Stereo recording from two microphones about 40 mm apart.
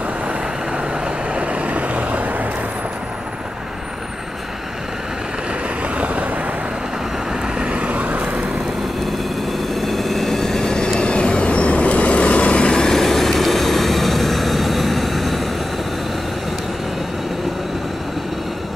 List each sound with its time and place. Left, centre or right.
1.0 s vehicle: right
5.9 s vehicle: right
7.4 s vehicle: right
9.5 s vehicle: centre; by 12.8 s left
12.8 s vehicle: centre